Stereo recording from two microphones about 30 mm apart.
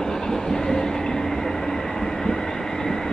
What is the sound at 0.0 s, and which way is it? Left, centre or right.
Train, centre.